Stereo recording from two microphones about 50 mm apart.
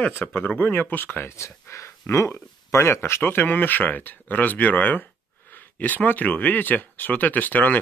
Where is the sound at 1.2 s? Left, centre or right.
Left.